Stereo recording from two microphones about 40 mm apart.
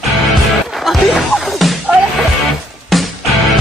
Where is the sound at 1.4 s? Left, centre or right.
Centre.